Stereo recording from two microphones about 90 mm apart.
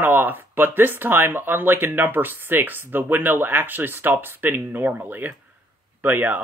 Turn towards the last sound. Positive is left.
turn(degrees=-20)  # may be behind; listen again after turning